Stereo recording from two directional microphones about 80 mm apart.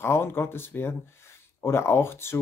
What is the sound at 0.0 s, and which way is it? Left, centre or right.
Speech, left.